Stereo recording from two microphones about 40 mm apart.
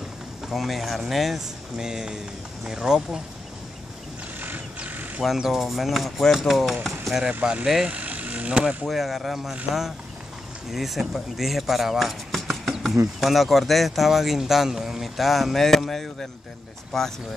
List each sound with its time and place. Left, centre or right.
0.5 s speech: centre
1.8 s speech: centre
4.7 s a sound: right
5.5 s speech: centre
7.4 s speech: centre
7.8 s speech: right
8.8 s speech: centre
10.7 s speech: centre
12.3 s a sound: centre
12.8 s speech: centre